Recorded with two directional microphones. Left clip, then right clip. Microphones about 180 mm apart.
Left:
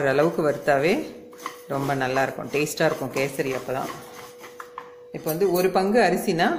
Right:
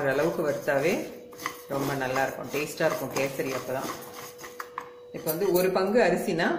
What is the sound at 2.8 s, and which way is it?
Speech, 50° left (ahead or behind).